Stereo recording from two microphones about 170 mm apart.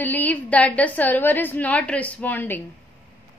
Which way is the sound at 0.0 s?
10° left (ahead or behind).